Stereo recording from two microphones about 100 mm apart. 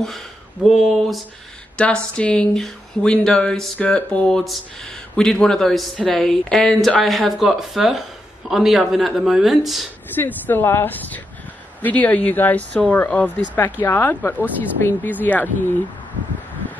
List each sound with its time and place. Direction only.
1.8 s speech: 10° left (ahead or behind)
10.1 s speech: 20° left (ahead or behind)